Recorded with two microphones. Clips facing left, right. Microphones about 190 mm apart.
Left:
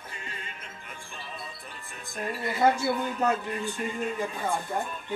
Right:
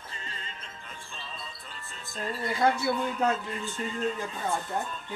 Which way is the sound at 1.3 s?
15° left (ahead or behind).